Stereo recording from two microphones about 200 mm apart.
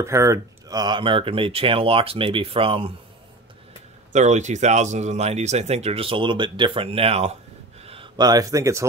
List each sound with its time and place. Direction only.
0.0 s speech: 15° right (ahead or behind)
4.1 s speech: 35° right (ahead or behind); by 8.8 s 15° right (ahead or behind)